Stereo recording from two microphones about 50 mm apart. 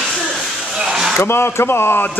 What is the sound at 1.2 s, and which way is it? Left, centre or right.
Speech, left.